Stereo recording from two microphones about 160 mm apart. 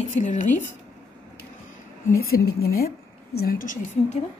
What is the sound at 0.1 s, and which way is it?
Speech, 50° left (ahead or behind).